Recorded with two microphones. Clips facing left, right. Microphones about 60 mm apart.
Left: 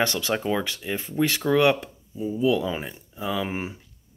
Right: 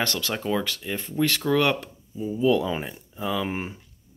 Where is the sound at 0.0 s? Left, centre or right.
Centre.